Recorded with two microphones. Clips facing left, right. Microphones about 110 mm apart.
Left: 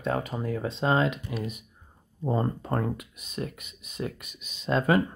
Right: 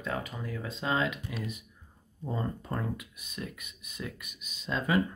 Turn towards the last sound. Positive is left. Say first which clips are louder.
# left 6 dB
turn(degrees=50)  # may be behind; listen again after turning